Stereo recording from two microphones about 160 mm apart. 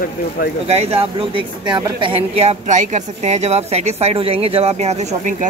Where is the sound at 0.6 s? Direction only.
40° right (ahead or behind).